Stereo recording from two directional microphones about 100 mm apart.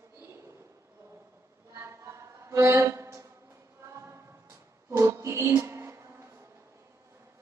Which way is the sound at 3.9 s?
30° right (ahead or behind).